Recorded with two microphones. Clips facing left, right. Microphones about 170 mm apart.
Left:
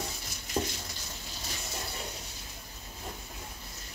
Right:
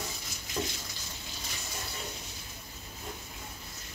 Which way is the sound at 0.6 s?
35° left (ahead or behind).